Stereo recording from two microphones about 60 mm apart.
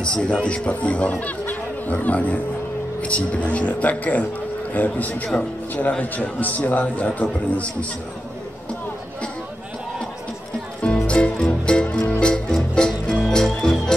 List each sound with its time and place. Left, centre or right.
0.0 s a man's voice: centre
10.8 s music: centre